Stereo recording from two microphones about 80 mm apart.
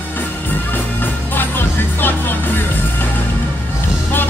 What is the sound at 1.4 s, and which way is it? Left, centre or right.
Music, left.